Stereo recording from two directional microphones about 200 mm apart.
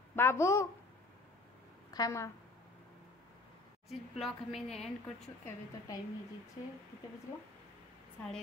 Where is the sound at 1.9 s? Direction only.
15° left (ahead or behind).